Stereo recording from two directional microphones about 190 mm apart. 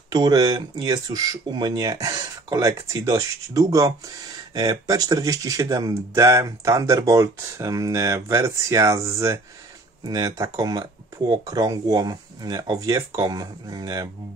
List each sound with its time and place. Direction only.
0.1 s speech: 20° right (ahead or behind)